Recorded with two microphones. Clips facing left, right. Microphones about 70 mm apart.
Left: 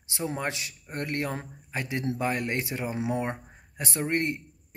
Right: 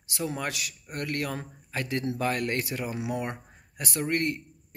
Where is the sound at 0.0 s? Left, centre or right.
Left.